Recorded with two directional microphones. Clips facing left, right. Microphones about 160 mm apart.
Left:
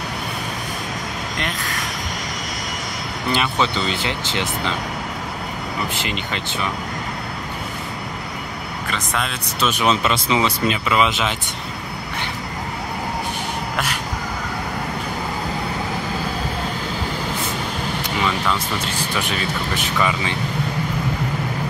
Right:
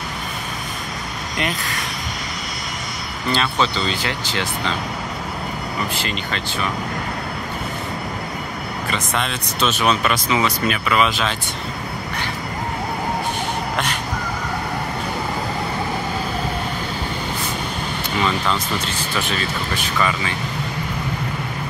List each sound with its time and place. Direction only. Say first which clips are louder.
3.3 s speech: even; 15° left (ahead or behind)
5.9 s speech: even; 20° left (ahead or behind)
8.9 s speech: right 1 dB; centre (ahead or behind)
9.8 s speech: left 1 dB; 20° left (ahead or behind)
19.1 s speech: right 1 dB; 15° left (ahead or behind)